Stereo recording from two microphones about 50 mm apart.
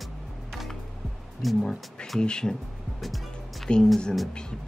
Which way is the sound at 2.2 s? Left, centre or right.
Centre.